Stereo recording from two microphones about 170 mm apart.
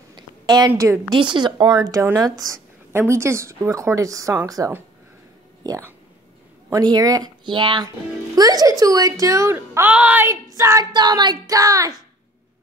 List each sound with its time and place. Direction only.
0.1 s a woman's voice: 25° right (ahead or behind)